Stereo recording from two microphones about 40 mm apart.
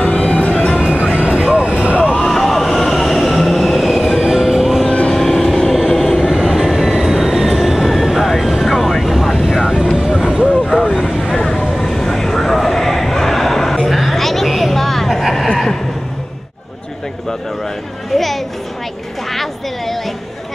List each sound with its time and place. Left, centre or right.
0.0 s music: left
0.7 s music: right
1.1 s vehicle: right
2.1 s train: centre
4.3 s music: centre
5.1 s train: centre
6.3 s train: centre
9.4 s vehicle: centre
10.6 s vehicle: centre
11.7 s a sound: centre
18.1 s a sound: centre
19.3 s music: centre